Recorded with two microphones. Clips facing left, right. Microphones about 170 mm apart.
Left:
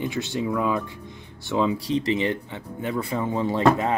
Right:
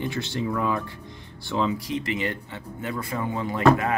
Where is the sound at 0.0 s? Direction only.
15° left (ahead or behind).